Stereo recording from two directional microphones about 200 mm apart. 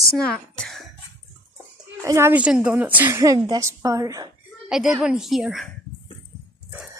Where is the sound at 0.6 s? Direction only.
Centre (ahead or behind).